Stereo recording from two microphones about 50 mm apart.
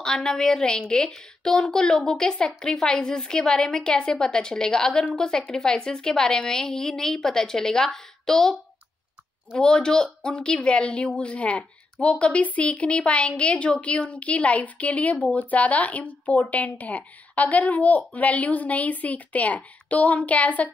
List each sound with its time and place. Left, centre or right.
0.0 s a woman's voice: centre
9.6 s a woman's voice: centre